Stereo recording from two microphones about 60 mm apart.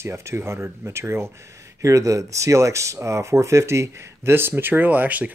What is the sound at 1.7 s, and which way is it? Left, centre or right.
Speech, right.